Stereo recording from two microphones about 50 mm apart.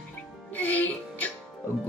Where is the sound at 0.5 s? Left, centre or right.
Left.